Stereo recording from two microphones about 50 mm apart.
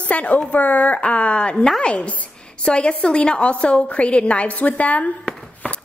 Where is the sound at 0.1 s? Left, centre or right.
Left.